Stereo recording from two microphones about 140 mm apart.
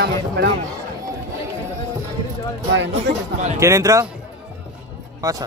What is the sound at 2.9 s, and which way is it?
Speech, 55° right (ahead or behind).